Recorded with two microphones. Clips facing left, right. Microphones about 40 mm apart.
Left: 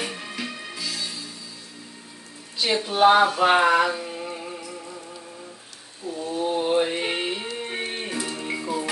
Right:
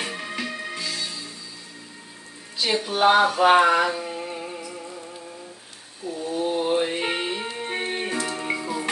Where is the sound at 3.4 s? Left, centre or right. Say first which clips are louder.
Right 1 dB; centre.